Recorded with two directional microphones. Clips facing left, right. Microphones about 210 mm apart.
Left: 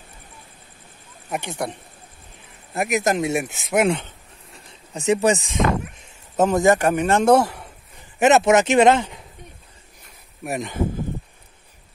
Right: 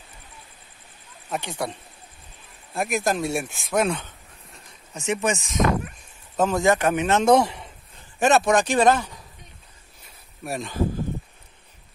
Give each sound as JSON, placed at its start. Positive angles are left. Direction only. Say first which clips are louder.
{"t": 1.3, "sound": "a man's voice", "louder": "left 2 dB", "side_deg": 15}
{"t": 4.9, "sound": "a man's voice", "louder": "left 6 dB", "side_deg": 35}
{"t": 8.0, "sound": "a man's voice", "louder": "left 4 dB", "side_deg": 20}
{"t": 10.4, "sound": "speech", "louder": "left 3 dB", "side_deg": 20}